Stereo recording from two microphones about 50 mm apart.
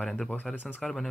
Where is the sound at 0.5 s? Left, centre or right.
Left.